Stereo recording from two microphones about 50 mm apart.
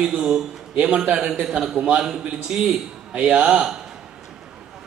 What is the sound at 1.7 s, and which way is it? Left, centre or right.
A woman's voice, right.